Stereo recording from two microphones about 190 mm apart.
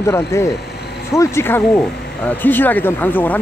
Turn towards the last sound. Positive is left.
turn(degrees=10)  # may be behind; listen again after turning